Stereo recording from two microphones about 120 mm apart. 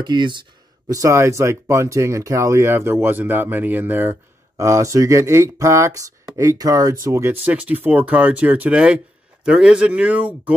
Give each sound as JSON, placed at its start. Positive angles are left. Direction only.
{"t": 0.0, "sound": "speech", "side_deg": -40}
{"t": 0.9, "sound": "speech", "side_deg": -25}